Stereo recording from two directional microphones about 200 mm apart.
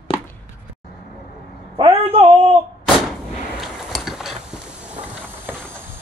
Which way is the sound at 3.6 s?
Centre (ahead or behind).